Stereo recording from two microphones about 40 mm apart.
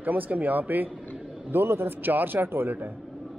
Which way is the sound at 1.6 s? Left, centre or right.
Right.